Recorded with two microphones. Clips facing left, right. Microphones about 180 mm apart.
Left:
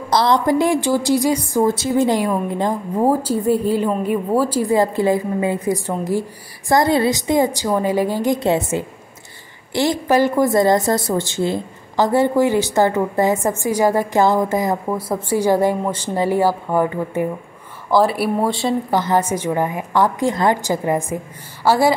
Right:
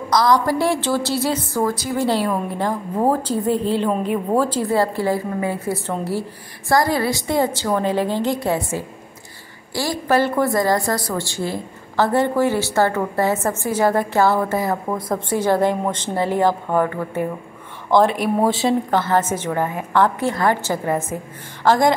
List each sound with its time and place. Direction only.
0.1 s a woman's voice: 25° left (ahead or behind)
8.4 s a woman's voice: 25° left (ahead or behind)
17.8 s speech: 5° left (ahead or behind)
18.9 s a woman's voice: 15° left (ahead or behind)